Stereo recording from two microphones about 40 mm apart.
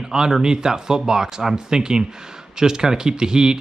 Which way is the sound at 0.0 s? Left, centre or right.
Centre.